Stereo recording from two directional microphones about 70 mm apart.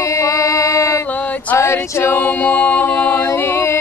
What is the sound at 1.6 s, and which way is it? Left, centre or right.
A capella, left.